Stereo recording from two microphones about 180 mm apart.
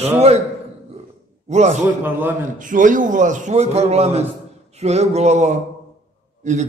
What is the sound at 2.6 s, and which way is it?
A man's voice, 45° right (ahead or behind).